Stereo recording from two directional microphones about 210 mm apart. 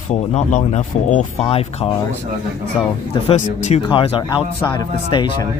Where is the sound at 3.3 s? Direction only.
30° left (ahead or behind).